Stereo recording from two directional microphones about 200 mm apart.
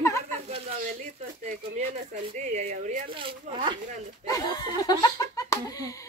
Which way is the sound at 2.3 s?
40° right (ahead or behind).